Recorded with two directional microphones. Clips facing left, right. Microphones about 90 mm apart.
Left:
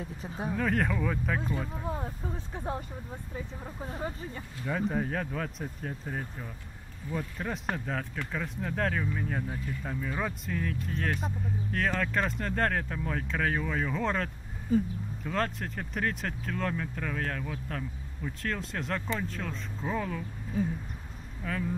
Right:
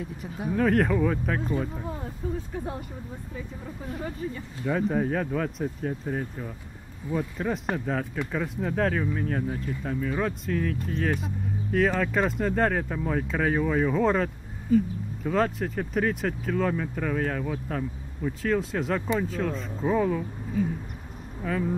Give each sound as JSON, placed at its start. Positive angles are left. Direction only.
{"t": 0.5, "sound": "speech", "side_deg": 0}
{"t": 1.9, "sound": "speech", "side_deg": 25}
{"t": 4.6, "sound": "speech", "side_deg": 0}
{"t": 21.4, "sound": "speech", "side_deg": -5}